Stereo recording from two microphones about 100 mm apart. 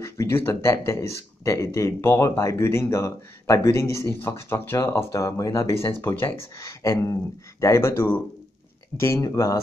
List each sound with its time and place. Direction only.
0.0 s speech: 30° left (ahead or behind)